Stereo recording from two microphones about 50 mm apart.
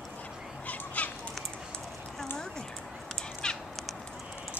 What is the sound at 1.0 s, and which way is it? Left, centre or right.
Bird, left.